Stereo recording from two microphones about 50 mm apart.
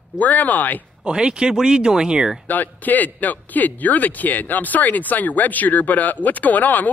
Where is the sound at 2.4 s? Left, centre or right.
Left.